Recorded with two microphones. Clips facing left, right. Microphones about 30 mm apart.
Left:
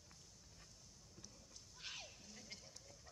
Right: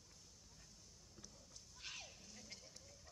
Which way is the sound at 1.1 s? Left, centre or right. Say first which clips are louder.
Even; centre.